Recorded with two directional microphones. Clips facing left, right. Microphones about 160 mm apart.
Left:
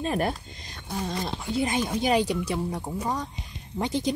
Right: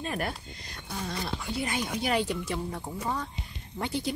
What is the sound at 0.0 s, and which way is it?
Speech, 30° left (ahead or behind).